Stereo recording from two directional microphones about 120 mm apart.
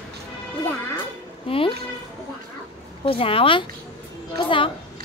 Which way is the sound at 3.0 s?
50° left (ahead or behind).